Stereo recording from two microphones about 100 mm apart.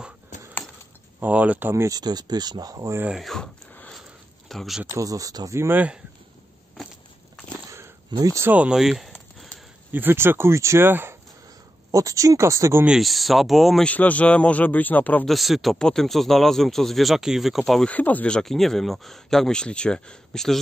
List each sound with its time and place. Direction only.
1.2 s speech: 15° right (ahead or behind)
1.9 s speech: 40° right (ahead or behind)
3.1 s speech: centre (ahead or behind)
4.5 s speech: centre (ahead or behind)
4.9 s speech: 35° right (ahead or behind)
8.1 s speech: 45° right (ahead or behind)
8.5 s a sound: 10° right (ahead or behind)
9.9 s speech: 20° right (ahead or behind)
11.9 s speech: 35° right (ahead or behind)
12.8 s speech: 5° right (ahead or behind)
13.8 s a man's voice: 15° left (ahead or behind)
15.2 s speech: centre (ahead or behind)
17.8 s a man's voice: 15° left (ahead or behind)